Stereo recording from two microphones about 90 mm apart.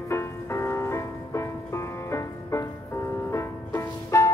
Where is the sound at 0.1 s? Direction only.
30° left (ahead or behind).